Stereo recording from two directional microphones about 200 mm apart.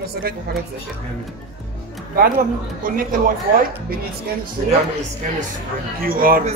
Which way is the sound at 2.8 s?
45° right (ahead or behind).